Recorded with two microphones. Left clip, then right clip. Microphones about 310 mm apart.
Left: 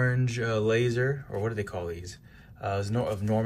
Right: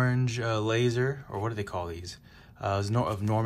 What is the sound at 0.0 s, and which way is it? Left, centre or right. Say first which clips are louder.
Speech: left 1 dB; centre.